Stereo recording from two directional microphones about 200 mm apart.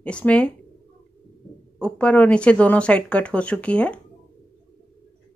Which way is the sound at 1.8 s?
5° left (ahead or behind).